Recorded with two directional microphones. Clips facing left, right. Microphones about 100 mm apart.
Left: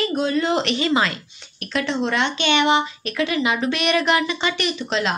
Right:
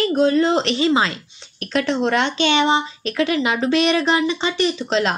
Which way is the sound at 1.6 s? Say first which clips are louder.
Right 3 dB; 35° right (ahead or behind).